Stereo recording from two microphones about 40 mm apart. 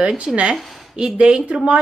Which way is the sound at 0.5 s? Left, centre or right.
Centre.